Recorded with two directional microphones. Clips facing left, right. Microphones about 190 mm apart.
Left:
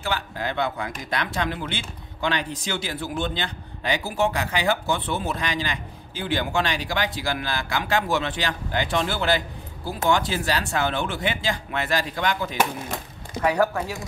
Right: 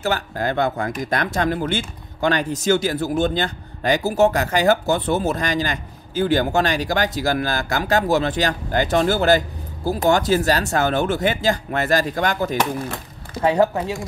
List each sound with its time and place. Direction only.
0.0 s speech: 45° right (ahead or behind)
13.4 s speech: 25° right (ahead or behind)